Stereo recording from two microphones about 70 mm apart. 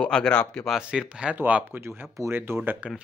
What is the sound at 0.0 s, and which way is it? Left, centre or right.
Speech, centre.